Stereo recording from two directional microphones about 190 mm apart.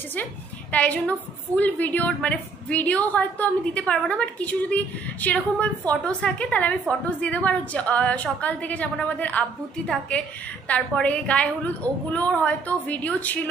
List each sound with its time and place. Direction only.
0.1 s a woman's voice: 10° left (ahead or behind)